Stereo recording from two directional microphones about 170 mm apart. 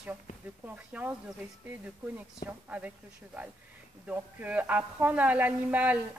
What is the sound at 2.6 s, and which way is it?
Speech, 10° right (ahead or behind).